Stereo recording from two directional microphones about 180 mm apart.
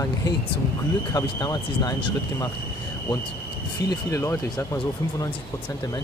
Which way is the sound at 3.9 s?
15° left (ahead or behind).